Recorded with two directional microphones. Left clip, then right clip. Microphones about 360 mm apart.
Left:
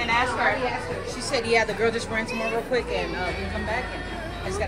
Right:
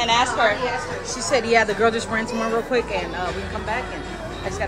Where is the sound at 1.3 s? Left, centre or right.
Right.